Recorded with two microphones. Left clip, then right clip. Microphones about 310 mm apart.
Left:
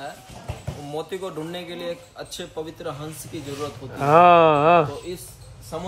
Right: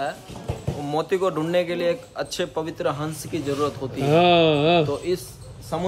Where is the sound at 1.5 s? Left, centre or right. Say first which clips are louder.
Right 10 dB; right.